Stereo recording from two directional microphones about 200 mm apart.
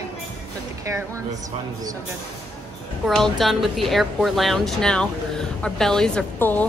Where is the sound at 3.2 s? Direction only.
Centre (ahead or behind).